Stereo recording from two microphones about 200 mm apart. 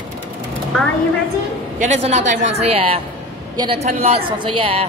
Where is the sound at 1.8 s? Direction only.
35° right (ahead or behind).